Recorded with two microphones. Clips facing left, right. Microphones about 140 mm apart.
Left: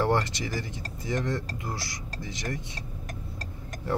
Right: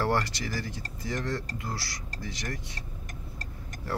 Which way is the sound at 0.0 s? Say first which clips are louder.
Left 2 dB; 20° left (ahead or behind).